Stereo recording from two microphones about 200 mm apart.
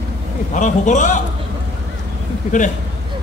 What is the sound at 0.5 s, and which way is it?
Speech, 40° left (ahead or behind).